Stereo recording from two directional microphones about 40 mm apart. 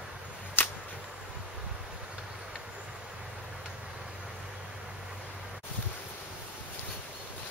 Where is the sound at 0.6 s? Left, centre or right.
Left.